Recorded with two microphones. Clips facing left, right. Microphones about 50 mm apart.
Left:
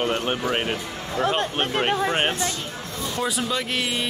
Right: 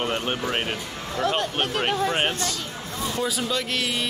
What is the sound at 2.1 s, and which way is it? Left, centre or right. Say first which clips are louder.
Speech: left 1 dB; centre.